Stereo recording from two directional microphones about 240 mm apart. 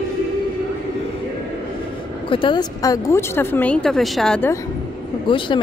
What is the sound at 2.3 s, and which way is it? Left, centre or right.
Speech, centre.